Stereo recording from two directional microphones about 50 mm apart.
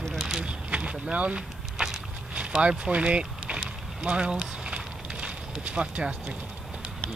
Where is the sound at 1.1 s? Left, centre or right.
Right.